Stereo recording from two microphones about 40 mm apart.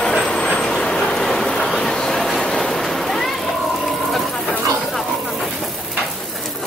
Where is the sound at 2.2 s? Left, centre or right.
Centre.